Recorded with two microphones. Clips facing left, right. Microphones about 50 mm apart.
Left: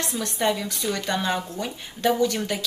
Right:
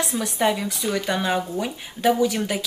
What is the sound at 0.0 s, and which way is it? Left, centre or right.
Speech, centre.